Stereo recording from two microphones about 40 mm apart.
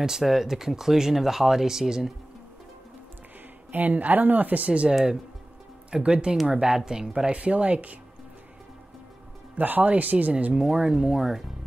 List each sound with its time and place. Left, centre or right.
0.2 s speech: centre
3.7 s speech: right
9.6 s speech: right
10.5 s speech: centre